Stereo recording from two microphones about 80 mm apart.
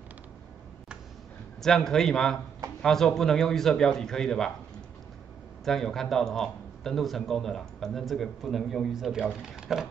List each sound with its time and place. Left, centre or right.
1.6 s speech: centre
5.7 s a man's voice: centre